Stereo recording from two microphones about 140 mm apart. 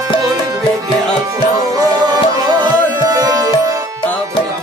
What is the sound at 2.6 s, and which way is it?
Music, 25° right (ahead or behind).